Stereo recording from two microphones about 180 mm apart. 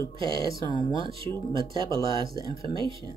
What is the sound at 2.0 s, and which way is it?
Speech, 25° right (ahead or behind).